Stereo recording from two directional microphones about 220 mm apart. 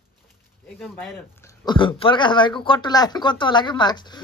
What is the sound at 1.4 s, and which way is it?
Speech, 20° left (ahead or behind).